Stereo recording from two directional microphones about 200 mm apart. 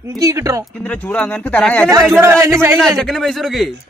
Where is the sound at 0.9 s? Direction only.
5° left (ahead or behind).